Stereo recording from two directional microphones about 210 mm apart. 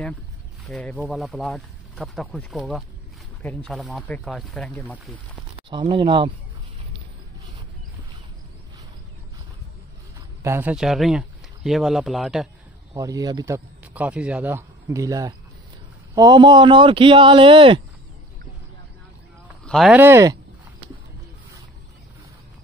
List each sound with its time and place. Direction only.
0.7 s speech: centre (ahead or behind)
5.7 s a man's voice: 20° right (ahead or behind)
10.4 s speech: 10° right (ahead or behind)
12.9 s speech: 15° right (ahead or behind)
13.9 s a man's voice: 5° right (ahead or behind); by 17.8 s 25° right (ahead or behind)
19.6 s speech: centre (ahead or behind)